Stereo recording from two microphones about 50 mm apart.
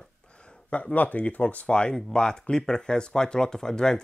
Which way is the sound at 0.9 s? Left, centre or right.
Left.